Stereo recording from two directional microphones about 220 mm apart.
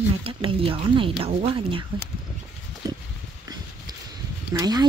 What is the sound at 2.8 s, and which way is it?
Pig, 15° right (ahead or behind).